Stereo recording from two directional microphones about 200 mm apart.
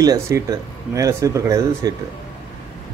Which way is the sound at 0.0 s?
20° right (ahead or behind).